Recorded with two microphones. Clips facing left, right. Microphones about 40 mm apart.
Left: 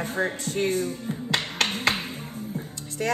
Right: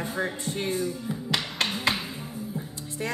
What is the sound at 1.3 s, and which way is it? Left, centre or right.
Finger snapping, left.